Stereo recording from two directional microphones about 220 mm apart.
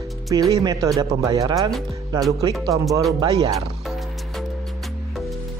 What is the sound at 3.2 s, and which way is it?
Speech, 15° right (ahead or behind).